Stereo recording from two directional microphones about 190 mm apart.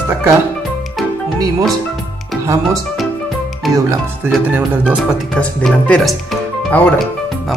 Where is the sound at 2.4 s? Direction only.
15° right (ahead or behind).